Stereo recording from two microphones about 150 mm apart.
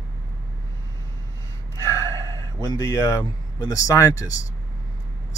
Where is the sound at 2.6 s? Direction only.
20° left (ahead or behind).